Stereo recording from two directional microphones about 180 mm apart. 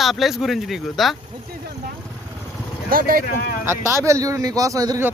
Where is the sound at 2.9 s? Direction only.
55° right (ahead or behind).